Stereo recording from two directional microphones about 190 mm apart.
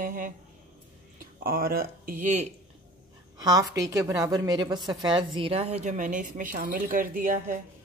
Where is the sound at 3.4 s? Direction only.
20° right (ahead or behind); by 7.6 s 45° right (ahead or behind).